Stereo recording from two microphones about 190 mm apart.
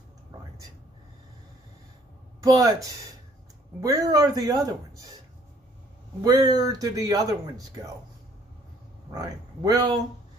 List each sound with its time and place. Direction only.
2.4 s speech: 20° right (ahead or behind)
6.2 s speech: 20° right (ahead or behind)
9.1 s speech: 20° right (ahead or behind)